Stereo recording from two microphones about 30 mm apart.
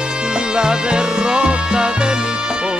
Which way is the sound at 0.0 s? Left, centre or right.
Right.